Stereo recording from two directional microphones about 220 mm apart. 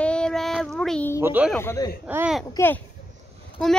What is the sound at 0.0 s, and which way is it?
Child singing, 5° left (ahead or behind).